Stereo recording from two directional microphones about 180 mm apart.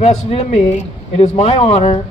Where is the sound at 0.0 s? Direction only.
40° left (ahead or behind).